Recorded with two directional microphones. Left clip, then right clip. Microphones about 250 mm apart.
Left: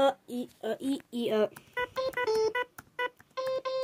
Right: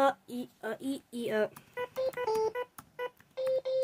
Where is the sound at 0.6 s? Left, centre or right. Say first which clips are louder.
Left 4 dB; centre.